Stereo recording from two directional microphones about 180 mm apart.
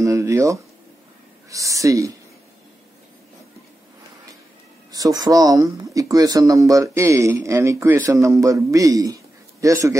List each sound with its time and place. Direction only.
0.0 s speech: 15° right (ahead or behind)
4.9 s speech: 20° right (ahead or behind)